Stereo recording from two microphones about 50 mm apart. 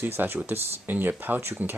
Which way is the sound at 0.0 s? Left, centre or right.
Right.